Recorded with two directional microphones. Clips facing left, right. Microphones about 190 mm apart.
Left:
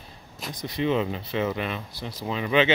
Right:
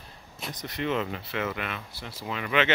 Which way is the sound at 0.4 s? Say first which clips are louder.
Left 4 dB; 10° left (ahead or behind).